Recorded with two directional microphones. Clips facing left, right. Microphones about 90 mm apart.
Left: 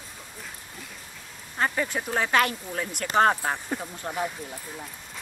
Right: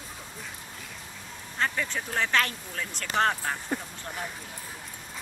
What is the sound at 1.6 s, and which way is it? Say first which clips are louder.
Speech: left 3 dB; 15° left (ahead or behind).